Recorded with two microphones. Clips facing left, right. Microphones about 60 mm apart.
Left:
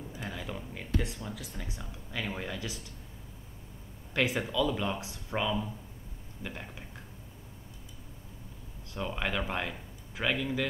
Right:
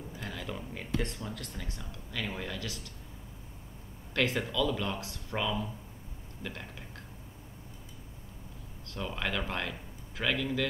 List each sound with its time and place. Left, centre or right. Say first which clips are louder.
0.1 s a sound: even; centre
0.6 s speech: right 1 dB; centre
4.1 s speech: left 1 dB; centre
8.9 s speech: left 1 dB; centre